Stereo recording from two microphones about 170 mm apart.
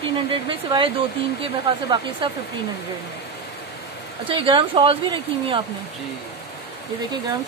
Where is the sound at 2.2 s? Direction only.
30° right (ahead or behind).